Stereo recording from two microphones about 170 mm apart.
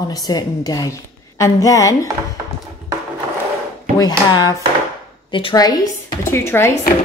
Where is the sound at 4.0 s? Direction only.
25° left (ahead or behind).